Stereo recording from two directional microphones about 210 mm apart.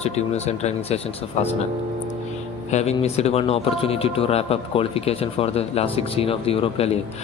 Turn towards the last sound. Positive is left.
turn(degrees=30)  # may be behind; listen again after turning